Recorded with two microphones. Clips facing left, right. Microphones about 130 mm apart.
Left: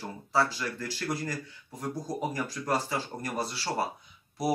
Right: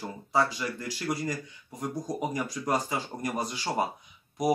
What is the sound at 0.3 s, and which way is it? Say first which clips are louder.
Speech: right 1 dB; 15° right (ahead or behind).